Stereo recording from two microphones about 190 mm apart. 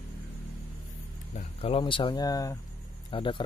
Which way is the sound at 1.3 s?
35° left (ahead or behind).